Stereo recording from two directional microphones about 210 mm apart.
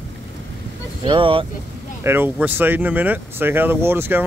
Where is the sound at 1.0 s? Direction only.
25° right (ahead or behind).